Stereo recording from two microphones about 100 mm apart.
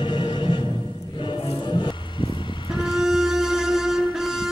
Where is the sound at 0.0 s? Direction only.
50° left (ahead or behind).